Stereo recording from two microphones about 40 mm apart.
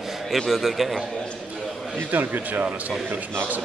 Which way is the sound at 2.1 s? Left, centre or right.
Right.